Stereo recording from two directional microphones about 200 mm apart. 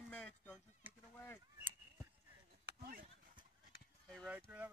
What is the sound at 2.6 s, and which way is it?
Chop, 50° right (ahead or behind).